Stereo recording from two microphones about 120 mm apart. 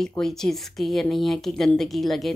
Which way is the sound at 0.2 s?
5° left (ahead or behind).